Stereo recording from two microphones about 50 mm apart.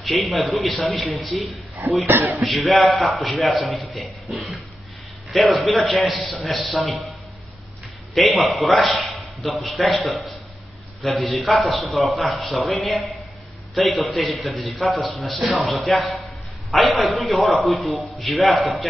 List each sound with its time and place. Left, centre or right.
0.0 s a man's voice: centre
2.0 s speech: right
2.4 s a man's voice: centre
8.1 s a man's voice: centre